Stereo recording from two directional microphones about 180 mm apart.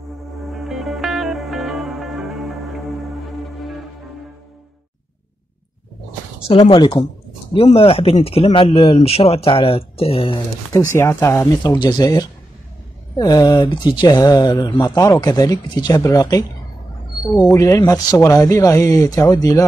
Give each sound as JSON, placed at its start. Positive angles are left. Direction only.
{"t": 0.5, "sound": "music", "side_deg": 0}
{"t": 6.4, "sound": "speech", "side_deg": 30}
{"t": 10.9, "sound": "speech", "side_deg": 15}